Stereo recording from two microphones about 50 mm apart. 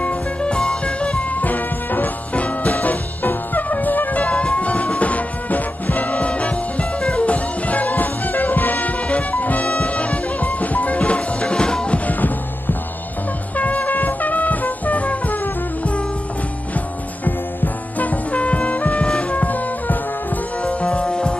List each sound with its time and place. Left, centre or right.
0.0 s music: centre
12.1 s music: left
17.9 s music: left
19.0 s music: centre
19.4 s music: left
20.6 s music: left